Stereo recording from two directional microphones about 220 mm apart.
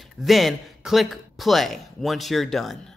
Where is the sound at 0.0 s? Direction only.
Centre (ahead or behind).